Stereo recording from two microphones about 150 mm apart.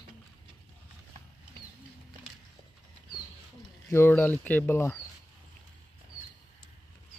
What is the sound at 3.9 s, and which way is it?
Speech, 10° left (ahead or behind).